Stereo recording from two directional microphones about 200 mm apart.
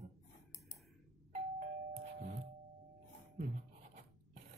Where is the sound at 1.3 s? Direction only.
40° right (ahead or behind).